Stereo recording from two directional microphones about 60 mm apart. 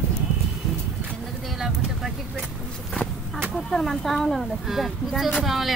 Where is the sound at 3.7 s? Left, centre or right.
Centre.